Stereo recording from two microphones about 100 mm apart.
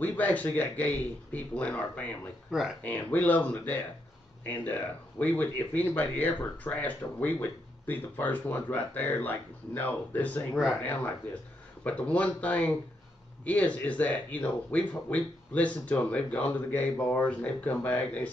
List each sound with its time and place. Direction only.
0.0 s speech: 20° left (ahead or behind)
10.5 s speech: centre (ahead or behind)
11.8 s speech: 15° left (ahead or behind)